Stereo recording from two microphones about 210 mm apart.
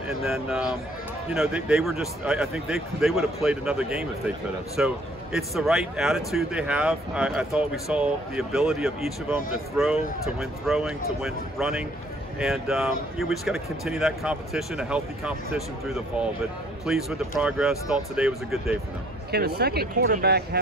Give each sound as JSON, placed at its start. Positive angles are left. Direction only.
{"t": 0.2, "sound": "speech", "side_deg": 0}
{"t": 19.3, "sound": "speech", "side_deg": -50}